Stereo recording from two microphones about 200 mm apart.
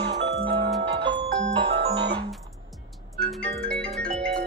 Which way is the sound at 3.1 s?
5° left (ahead or behind).